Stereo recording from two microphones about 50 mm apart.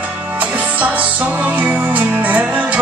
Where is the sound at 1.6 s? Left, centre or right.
Right.